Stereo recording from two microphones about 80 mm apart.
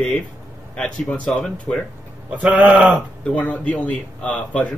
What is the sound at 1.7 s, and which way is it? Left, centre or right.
Speech, left.